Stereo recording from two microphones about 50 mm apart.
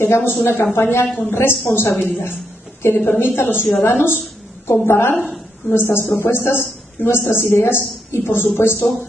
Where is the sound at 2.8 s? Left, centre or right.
Left.